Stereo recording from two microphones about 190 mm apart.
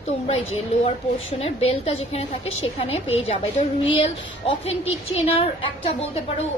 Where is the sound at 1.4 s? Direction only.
30° left (ahead or behind).